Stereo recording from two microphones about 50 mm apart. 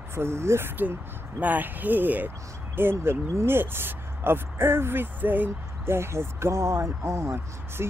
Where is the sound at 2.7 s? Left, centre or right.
Right.